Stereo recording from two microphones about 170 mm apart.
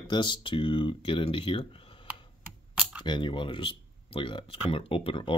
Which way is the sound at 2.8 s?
10° right (ahead or behind).